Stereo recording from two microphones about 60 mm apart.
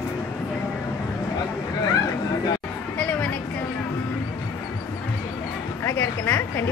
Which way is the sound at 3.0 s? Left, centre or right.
Left.